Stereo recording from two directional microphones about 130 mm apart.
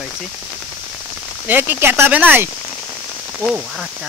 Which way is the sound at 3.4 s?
5° right (ahead or behind).